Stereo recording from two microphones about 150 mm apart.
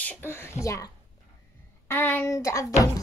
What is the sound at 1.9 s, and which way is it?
Speech, 15° left (ahead or behind).